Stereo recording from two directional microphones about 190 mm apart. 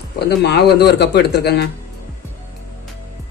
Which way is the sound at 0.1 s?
60° left (ahead or behind).